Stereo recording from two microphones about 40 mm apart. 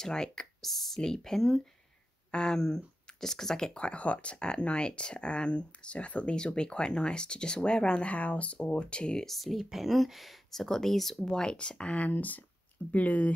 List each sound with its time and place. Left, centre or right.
0.0 s speech: centre
3.7 s speech: left
9.2 s speech: centre
10.5 s speech: centre
11.2 s speech: left
12.0 s speech: left